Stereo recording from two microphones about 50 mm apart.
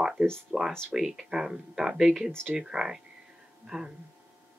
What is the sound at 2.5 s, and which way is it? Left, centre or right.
Speech, centre.